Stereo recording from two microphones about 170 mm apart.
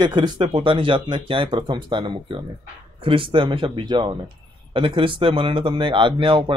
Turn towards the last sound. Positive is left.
turn(degrees=-30)  # may be behind; listen again after turning